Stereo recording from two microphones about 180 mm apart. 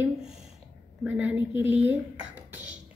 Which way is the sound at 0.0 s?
5° right (ahead or behind).